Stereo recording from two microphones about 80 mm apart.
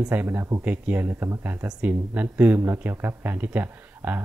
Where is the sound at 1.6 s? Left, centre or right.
Centre.